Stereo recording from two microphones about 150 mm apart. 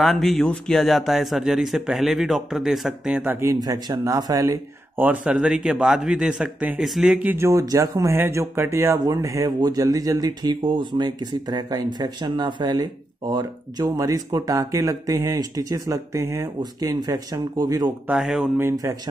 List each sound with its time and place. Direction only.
0.0 s speech: centre (ahead or behind)
3.6 s a man's voice: 25° right (ahead or behind)
5.0 s a man's voice: 10° right (ahead or behind); by 17.9 s 25° right (ahead or behind)
18.0 s speech: 5° right (ahead or behind)
18.6 s a man's voice: 20° right (ahead or behind)